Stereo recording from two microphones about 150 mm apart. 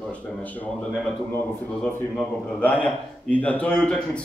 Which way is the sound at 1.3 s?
10° left (ahead or behind).